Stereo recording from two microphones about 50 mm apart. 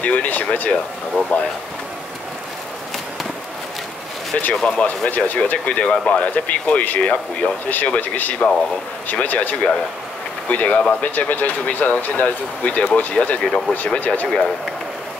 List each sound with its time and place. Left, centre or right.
0.0 s speech: left
4.6 s speech: left